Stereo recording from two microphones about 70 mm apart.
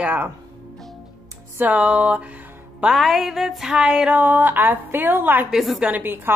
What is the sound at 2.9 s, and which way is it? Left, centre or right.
A woman's voice, centre.